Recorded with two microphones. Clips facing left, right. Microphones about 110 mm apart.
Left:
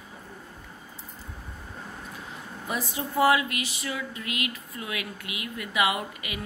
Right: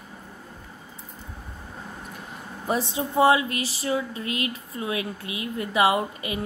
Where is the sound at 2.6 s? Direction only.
30° right (ahead or behind).